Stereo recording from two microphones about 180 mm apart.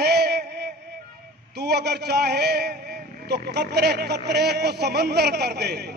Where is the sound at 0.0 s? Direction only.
65° right (ahead or behind).